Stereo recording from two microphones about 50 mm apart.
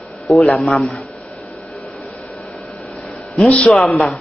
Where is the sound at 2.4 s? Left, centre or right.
Centre.